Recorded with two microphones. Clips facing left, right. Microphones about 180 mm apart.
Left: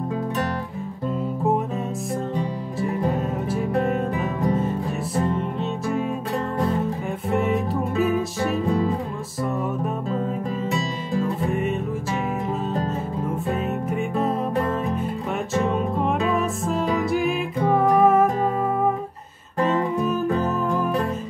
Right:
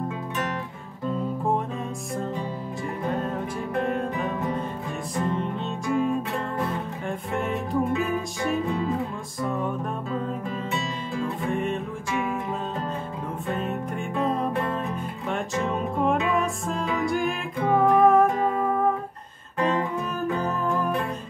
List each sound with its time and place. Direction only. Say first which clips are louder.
3.8 s music: left 3 dB; centre (ahead or behind)
7.2 s music: left 7 dB; centre (ahead or behind)
8.4 s music: left 3 dB; 35° left (ahead or behind)
11.5 s music: left 2 dB; 5° left (ahead or behind)
13.5 s music: left 1 dB; 5° left (ahead or behind)
15.6 s music: left 1 dB; centre (ahead or behind)
20.0 s music: left 5 dB; centre (ahead or behind)